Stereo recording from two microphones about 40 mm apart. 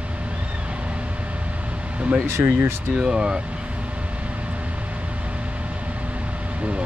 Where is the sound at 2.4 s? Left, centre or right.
Right.